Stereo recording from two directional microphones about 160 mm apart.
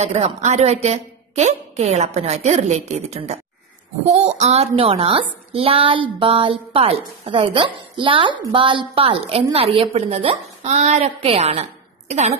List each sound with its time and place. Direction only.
0.0 s a woman's voice: 40° right (ahead or behind)